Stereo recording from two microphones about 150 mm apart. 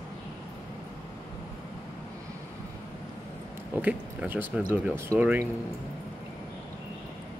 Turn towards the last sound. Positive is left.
turn(degrees=-10)  # may be behind; listen again after turning